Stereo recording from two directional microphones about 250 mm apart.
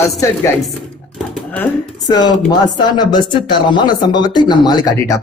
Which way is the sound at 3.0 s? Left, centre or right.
Centre.